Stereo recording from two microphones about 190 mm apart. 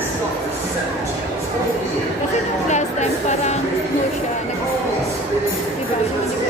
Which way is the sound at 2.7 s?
35° left (ahead or behind).